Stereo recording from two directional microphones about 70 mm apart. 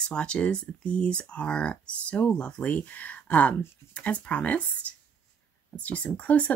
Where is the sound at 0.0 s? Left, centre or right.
Centre.